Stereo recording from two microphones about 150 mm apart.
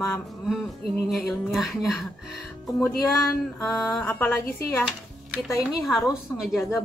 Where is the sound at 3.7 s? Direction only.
Centre (ahead or behind).